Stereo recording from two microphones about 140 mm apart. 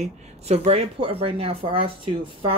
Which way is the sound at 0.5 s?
45° right (ahead or behind).